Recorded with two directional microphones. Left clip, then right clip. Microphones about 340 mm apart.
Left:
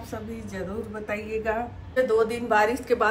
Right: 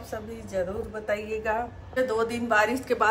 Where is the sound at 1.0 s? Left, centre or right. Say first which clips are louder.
Even; centre.